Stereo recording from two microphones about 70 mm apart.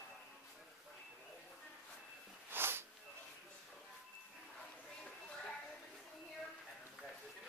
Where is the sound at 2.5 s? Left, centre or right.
Right.